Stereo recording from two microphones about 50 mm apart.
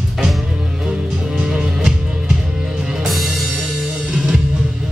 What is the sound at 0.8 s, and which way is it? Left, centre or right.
Music, centre.